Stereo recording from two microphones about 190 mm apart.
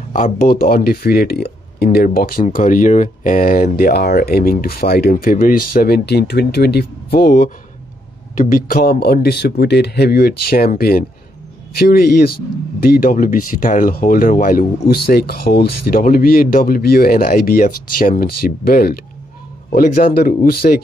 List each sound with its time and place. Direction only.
0.1 s speech: 50° left (ahead or behind)
20.2 s speech: 55° left (ahead or behind)